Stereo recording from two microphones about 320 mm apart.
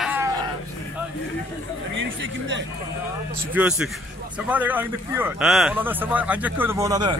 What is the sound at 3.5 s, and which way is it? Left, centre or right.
A man's voice, centre.